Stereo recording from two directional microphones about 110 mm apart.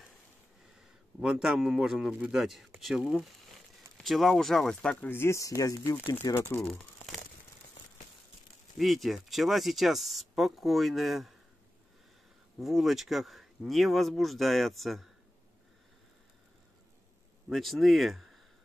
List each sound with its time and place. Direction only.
1.2 s speech: 5° right (ahead or behind)
5.0 s speech: 20° left (ahead or behind)
8.7 s speech: centre (ahead or behind)
12.5 s speech: centre (ahead or behind)
17.5 s speech: centre (ahead or behind)